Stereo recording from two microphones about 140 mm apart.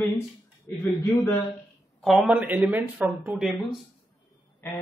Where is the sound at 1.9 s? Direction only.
Centre (ahead or behind).